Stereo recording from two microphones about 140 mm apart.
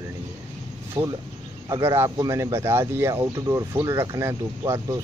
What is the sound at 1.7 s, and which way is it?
Speech, 15° right (ahead or behind).